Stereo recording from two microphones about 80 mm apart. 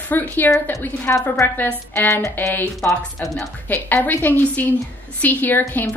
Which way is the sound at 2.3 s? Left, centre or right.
Left.